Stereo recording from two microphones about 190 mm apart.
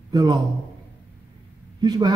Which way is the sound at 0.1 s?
20° right (ahead or behind).